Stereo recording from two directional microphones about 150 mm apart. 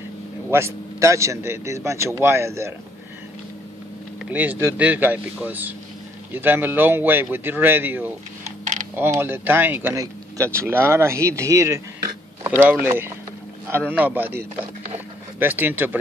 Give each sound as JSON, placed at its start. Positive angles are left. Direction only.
{"t": 0.5, "sound": "a man's voice", "side_deg": -15}
{"t": 4.2, "sound": "speech", "side_deg": -10}
{"t": 8.5, "sound": "a sound", "side_deg": -50}
{"t": 8.9, "sound": "speech", "side_deg": -15}